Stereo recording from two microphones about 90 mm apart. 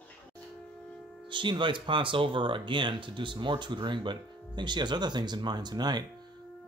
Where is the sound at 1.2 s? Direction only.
65° right (ahead or behind).